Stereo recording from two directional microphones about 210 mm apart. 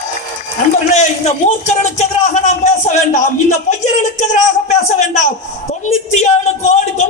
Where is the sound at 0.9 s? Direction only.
35° left (ahead or behind).